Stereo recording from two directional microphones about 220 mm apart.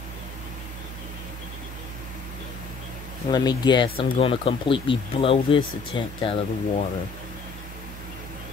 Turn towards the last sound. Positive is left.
turn(degrees=25)  # may be behind; listen again after turning